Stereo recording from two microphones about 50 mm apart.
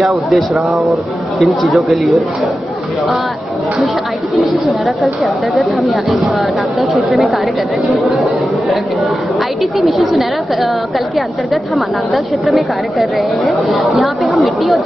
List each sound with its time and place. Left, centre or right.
0.3 s a woman's voice: centre
4.4 s a woman's voice: centre